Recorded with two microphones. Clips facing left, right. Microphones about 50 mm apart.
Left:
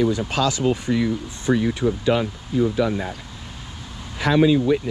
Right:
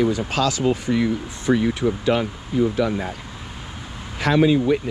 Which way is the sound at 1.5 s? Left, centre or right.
Right.